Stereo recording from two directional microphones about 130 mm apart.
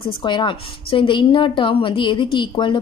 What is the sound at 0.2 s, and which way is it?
A woman's voice, 35° left (ahead or behind).